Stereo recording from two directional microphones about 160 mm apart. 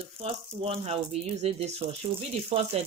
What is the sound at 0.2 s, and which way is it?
Speech, 40° right (ahead or behind).